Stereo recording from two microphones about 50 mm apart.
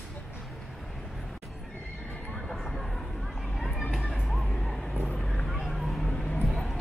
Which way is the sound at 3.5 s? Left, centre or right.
Centre.